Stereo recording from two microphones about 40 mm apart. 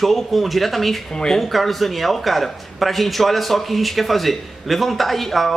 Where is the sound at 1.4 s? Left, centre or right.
Centre.